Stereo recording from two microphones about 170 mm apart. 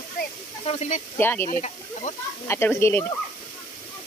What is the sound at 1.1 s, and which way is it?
Speech, 10° left (ahead or behind).